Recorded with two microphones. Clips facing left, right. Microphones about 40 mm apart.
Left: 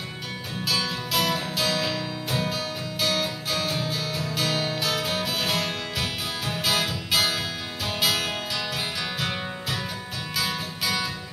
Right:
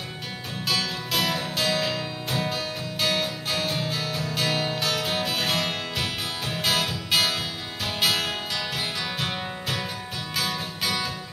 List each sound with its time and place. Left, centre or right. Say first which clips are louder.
0.7 s music: even; centre